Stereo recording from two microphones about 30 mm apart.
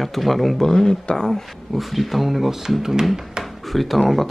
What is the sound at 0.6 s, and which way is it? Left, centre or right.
Speech, left.